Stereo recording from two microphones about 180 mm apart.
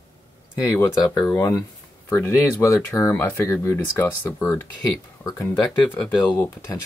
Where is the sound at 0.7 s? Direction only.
15° left (ahead or behind).